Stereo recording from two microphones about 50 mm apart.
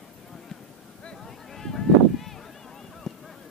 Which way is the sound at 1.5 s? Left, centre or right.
Centre.